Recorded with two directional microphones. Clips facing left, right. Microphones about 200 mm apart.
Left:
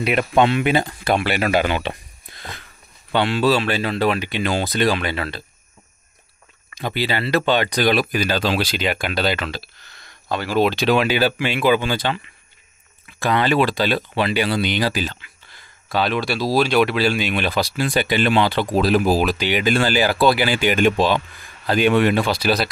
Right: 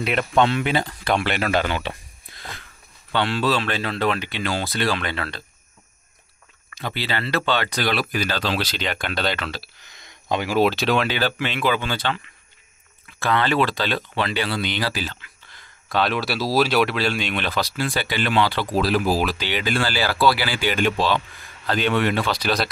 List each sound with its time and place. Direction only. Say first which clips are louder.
0.0 s speech: left 3 dB; 10° left (ahead or behind)
3.1 s speech: left 4 dB; 10° left (ahead or behind)
6.7 s speech: left 4 dB; 15° left (ahead or behind)
9.6 s speech: left 2 dB; 15° right (ahead or behind)
10.6 s speech: left 3 dB; centre (ahead or behind); by 12.2 s 15° left (ahead or behind)
13.2 s speech: left 3 dB; 15° left (ahead or behind)